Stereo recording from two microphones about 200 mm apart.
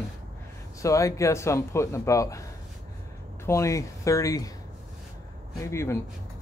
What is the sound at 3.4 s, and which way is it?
Speech, 15° left (ahead or behind).